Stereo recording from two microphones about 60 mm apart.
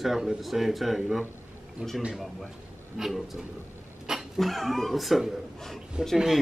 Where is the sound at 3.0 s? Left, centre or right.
Centre.